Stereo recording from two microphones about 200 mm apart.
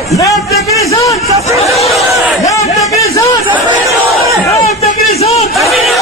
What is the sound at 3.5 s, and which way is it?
Chatter, 15° right (ahead or behind).